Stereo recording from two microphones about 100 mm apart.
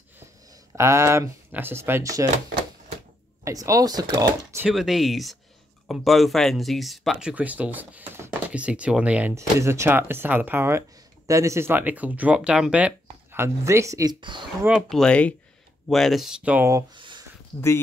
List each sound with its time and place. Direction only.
0.7 s speech: 30° right (ahead or behind)
3.4 s speech: 35° right (ahead or behind)
4.6 s speech: 5° right (ahead or behind)
9.3 s speech: 30° right (ahead or behind); by 13.4 s 15° right (ahead or behind)
13.4 s speech: 30° right (ahead or behind)
14.8 s speech: 5° left (ahead or behind)
16.5 s speech: 25° right (ahead or behind)
16.9 s a sound: 50° right (ahead or behind)